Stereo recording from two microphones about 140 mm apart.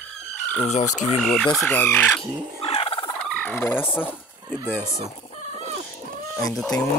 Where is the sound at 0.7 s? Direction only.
55° left (ahead or behind).